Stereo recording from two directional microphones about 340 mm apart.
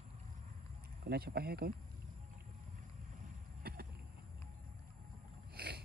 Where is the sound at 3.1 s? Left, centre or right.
Right.